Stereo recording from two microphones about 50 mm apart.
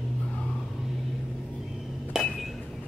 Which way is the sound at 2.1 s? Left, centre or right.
Centre.